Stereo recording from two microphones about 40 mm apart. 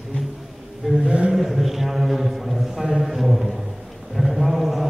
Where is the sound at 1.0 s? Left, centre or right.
Right.